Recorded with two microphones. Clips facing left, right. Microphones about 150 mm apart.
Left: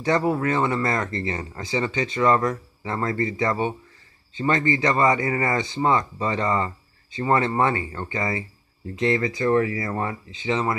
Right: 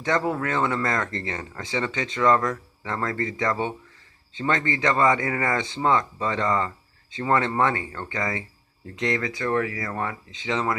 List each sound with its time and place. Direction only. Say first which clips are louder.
0.0 s speech: left 3 dB; 10° left (ahead or behind)
9.2 s speech: left 4 dB; 15° left (ahead or behind)
10.3 s speech: left 2 dB; 5° left (ahead or behind)